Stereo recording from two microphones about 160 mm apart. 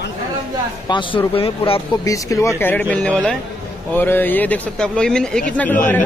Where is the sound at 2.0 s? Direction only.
20° left (ahead or behind).